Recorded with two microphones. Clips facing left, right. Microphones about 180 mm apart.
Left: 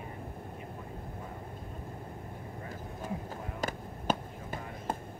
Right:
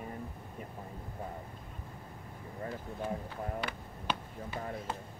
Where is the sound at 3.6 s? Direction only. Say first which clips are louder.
Left 5 dB; 45° left (ahead or behind).